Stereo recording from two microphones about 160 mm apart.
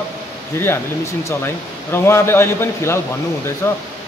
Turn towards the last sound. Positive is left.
turn(degrees=15)  # may be behind; listen again after turning